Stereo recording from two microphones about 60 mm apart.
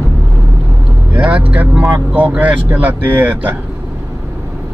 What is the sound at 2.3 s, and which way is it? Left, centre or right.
Speech, right.